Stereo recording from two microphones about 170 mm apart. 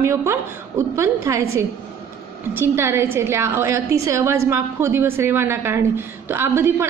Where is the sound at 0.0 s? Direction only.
15° right (ahead or behind).